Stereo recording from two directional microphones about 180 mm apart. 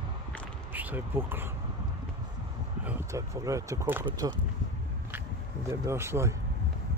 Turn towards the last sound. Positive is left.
turn(degrees=-15)  # may be behind; listen again after turning